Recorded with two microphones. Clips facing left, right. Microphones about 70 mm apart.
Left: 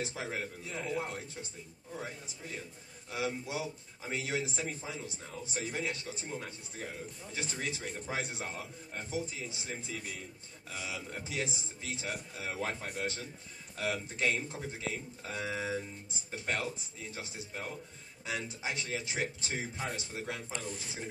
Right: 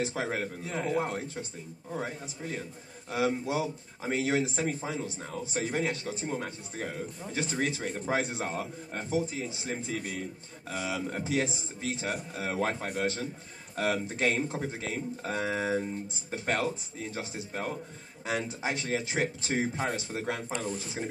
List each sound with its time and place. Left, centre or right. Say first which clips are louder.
0.0 s a man's voice: right 6 dB; right